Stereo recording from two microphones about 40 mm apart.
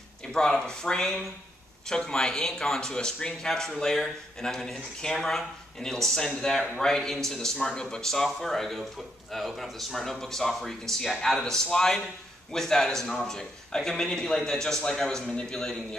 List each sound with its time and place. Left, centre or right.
0.3 s a man's voice: centre